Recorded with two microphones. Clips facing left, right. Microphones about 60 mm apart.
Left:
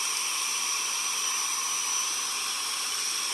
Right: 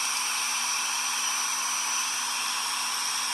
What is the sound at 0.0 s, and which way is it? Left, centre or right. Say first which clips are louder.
Hair dryer: right 3 dB; right.